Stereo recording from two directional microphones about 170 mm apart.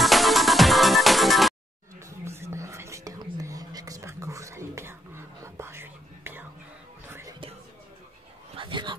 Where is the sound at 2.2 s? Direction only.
15° right (ahead or behind).